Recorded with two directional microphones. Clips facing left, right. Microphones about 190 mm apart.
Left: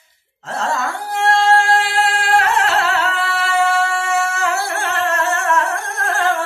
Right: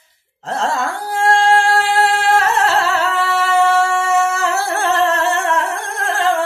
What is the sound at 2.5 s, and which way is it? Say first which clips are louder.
Music: right 1 dB; 40° right (ahead or behind).